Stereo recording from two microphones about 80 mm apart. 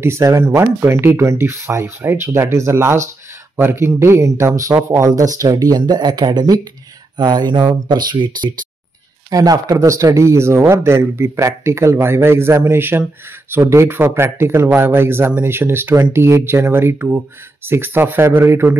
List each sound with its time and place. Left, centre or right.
0.0 s speech: right
7.2 s a sound: right
7.9 s speech: right
9.3 s speech: right